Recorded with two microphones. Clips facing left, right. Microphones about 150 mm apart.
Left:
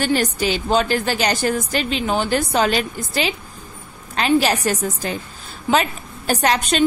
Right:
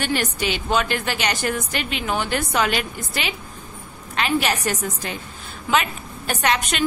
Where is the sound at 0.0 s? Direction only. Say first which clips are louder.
Left 4 dB; 35° left (ahead or behind).